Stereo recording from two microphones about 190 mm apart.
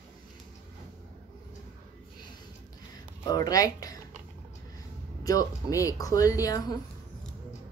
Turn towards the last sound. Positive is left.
turn(degrees=20)  # may be behind; listen again after turning